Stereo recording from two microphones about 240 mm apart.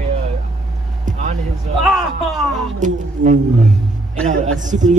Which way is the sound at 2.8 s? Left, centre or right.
Right.